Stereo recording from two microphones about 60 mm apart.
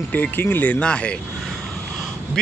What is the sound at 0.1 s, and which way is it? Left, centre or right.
Speech, left.